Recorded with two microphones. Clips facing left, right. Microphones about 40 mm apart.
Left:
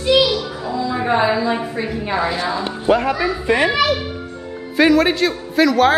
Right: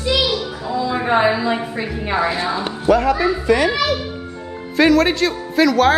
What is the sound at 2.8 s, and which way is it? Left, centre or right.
Speech, left.